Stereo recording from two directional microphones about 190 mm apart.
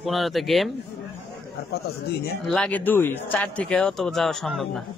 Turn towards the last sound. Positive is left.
turn(degrees=0)  # may be behind; listen again after turning